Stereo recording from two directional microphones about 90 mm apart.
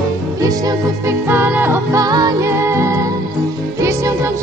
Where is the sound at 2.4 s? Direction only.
30° right (ahead or behind).